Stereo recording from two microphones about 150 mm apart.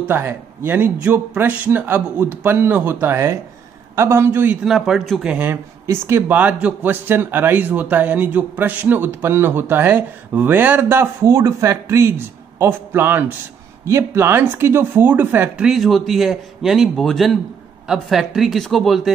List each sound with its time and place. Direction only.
0.1 s speech: 15° right (ahead or behind)
4.6 s speech: centre (ahead or behind)